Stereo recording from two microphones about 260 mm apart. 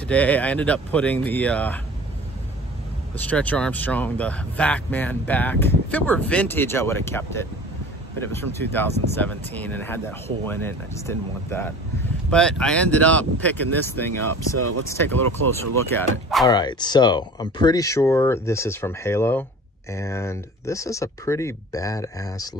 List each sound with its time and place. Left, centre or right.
0.1 s speech: centre
3.2 s speech: centre
14.3 s speech: right
14.9 s speech: centre
16.4 s speech: centre